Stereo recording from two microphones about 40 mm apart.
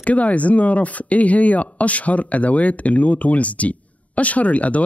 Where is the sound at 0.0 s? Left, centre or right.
Left.